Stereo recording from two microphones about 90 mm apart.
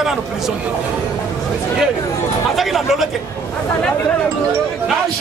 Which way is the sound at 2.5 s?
Centre (ahead or behind).